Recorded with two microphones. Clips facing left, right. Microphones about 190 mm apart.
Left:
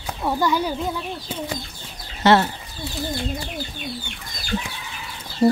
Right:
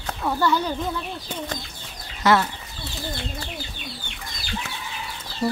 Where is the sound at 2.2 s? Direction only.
30° left (ahead or behind).